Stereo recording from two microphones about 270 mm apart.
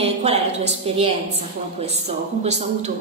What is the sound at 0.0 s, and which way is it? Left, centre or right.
A woman's voice, right.